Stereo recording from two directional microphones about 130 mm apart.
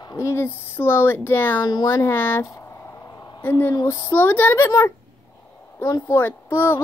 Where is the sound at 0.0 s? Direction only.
25° left (ahead or behind).